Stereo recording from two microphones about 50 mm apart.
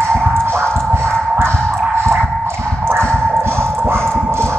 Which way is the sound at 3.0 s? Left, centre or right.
Centre.